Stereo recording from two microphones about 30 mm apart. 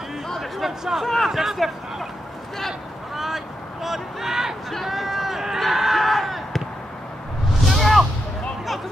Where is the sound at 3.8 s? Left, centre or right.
Centre.